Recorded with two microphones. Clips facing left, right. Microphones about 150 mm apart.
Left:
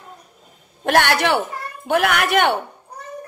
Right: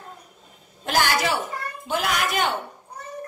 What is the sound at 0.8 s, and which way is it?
A woman's voice, 65° left (ahead or behind).